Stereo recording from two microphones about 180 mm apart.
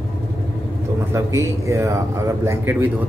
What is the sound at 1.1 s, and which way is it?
Speech, 15° right (ahead or behind).